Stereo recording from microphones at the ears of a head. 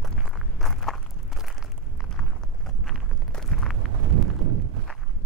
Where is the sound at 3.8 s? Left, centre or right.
Right.